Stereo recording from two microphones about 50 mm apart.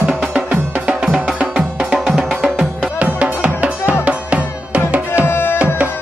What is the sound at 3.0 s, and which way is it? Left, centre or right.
Music, right.